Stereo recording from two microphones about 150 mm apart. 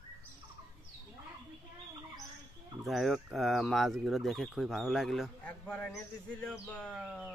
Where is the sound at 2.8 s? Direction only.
Centre (ahead or behind).